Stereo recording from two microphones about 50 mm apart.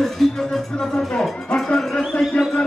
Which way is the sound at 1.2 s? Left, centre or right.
Centre.